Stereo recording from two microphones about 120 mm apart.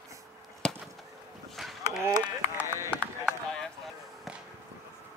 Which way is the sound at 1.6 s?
Centre (ahead or behind).